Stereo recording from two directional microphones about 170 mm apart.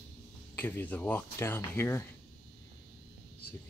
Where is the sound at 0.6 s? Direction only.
10° left (ahead or behind).